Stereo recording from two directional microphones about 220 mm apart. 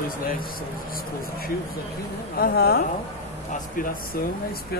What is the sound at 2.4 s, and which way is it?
Speech, 45° left (ahead or behind).